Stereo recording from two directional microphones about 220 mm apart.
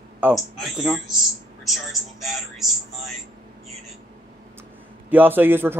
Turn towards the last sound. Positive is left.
turn(degrees=-10)  # may be behind; listen again after turning